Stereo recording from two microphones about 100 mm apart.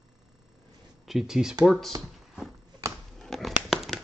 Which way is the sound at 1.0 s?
5° right (ahead or behind).